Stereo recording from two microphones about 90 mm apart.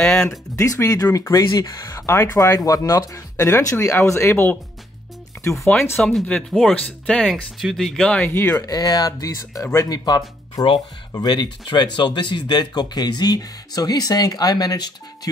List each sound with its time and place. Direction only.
0.0 s speech: 5° left (ahead or behind)
0.6 s speech: 35° left (ahead or behind)
5.9 s speech: 5° left (ahead or behind)
8.2 s speech: 20° left (ahead or behind)
8.5 s speech: 45° left (ahead or behind)
9.8 s speech: 50° left (ahead or behind)